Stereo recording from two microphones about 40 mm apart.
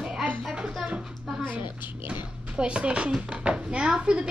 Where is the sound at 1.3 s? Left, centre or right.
Centre.